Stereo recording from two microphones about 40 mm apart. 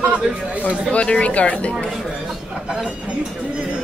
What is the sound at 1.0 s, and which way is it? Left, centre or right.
Speech, left.